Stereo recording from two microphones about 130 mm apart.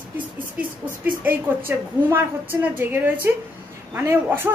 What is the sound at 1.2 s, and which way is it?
A woman's voice, 15° right (ahead or behind).